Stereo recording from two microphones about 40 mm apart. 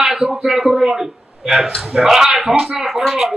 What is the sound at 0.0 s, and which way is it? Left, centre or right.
A man's voice, centre.